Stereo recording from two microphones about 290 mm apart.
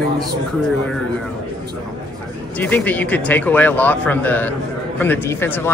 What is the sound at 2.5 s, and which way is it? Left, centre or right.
Speech, centre.